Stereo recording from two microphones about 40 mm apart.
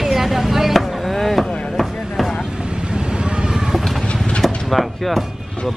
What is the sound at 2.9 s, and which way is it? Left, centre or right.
Vehicle, right.